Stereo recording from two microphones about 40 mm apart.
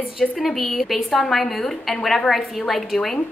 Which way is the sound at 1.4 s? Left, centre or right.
Left.